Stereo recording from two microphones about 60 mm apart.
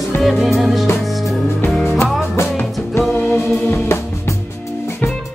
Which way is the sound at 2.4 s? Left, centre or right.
Left.